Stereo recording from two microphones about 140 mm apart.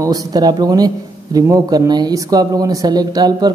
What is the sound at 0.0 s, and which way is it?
Speech, 25° right (ahead or behind).